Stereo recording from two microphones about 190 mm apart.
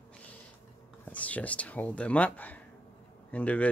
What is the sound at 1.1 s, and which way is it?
Speech, 5° left (ahead or behind).